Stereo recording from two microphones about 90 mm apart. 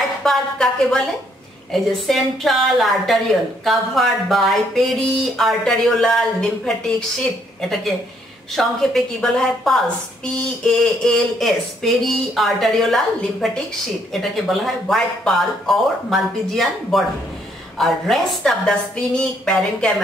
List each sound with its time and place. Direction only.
0.2 s a woman's voice: 5° left (ahead or behind)
8.5 s a woman's voice: 5° left (ahead or behind)